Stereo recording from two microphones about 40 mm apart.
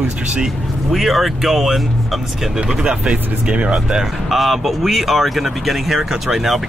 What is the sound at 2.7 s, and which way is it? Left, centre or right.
Speech, centre.